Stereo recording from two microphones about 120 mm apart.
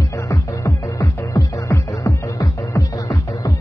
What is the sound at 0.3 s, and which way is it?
Music, 25° left (ahead or behind).